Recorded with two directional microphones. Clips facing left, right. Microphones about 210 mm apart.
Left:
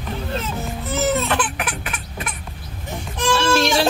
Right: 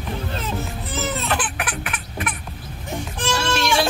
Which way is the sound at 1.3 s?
25° left (ahead or behind).